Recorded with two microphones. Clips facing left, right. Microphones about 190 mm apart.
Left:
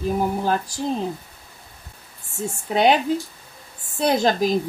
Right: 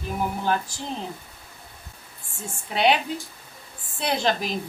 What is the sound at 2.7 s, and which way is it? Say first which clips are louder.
Speech: left 4 dB; 45° left (ahead or behind).